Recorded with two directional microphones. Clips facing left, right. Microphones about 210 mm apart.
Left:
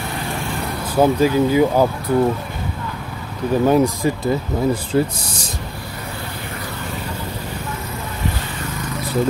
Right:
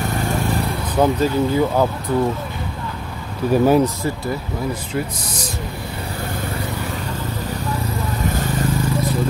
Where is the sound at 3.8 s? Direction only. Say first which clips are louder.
Left 2 dB; 15° left (ahead or behind).